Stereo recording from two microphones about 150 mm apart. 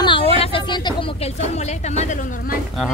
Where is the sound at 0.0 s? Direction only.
35° left (ahead or behind).